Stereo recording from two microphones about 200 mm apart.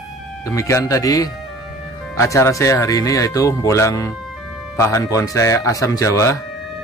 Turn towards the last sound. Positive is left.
turn(degrees=15)  # may be behind; listen again after turning